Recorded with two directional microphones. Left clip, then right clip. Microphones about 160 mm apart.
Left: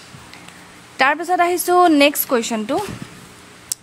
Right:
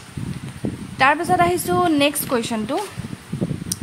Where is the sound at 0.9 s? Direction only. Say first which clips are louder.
Even; 25° left (ahead or behind).